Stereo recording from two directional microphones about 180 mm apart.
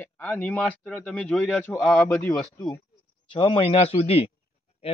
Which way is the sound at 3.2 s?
30° left (ahead or behind).